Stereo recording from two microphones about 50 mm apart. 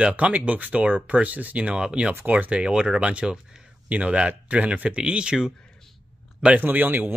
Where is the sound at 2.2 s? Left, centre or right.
Right.